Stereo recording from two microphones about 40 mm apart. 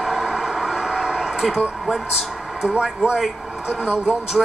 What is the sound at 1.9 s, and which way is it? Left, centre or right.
Speech, centre.